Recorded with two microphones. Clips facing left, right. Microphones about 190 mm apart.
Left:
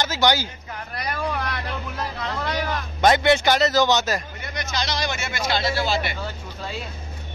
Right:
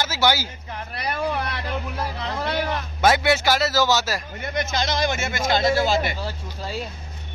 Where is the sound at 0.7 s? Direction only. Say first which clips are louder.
Right 2 dB; 30° right (ahead or behind).